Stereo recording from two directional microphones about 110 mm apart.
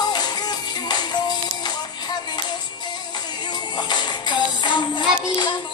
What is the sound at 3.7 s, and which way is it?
Music, 45° left (ahead or behind).